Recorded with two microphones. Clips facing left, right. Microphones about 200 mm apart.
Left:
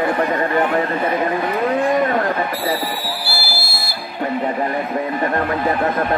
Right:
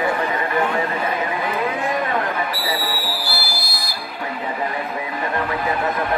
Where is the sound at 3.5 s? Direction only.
15° right (ahead or behind).